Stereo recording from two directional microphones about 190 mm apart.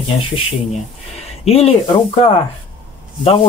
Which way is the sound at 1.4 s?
30° left (ahead or behind).